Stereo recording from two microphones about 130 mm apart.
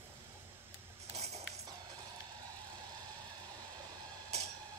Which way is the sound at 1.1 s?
55° right (ahead or behind).